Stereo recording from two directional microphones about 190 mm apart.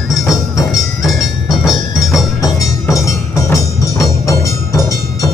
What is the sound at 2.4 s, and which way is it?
Music, 15° left (ahead or behind).